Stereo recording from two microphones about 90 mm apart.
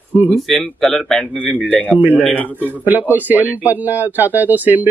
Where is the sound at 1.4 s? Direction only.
15° left (ahead or behind).